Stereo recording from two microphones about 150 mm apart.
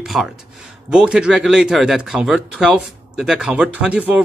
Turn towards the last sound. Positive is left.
turn(degrees=-10)  # may be behind; listen again after turning